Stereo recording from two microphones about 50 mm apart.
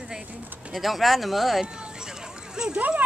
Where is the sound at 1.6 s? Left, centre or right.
Centre.